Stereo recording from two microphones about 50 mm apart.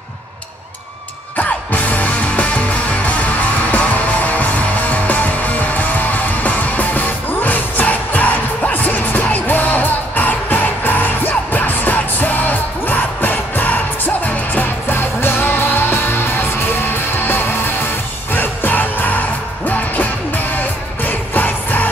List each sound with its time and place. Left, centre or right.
1.3 s music: left